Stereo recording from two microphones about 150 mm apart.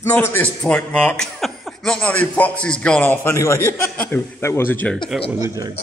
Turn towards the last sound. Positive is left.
turn(degrees=10)  # may be behind; listen again after turning